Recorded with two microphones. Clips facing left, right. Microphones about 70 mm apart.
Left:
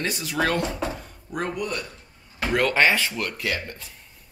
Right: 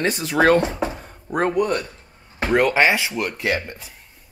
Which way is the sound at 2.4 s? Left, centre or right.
Right.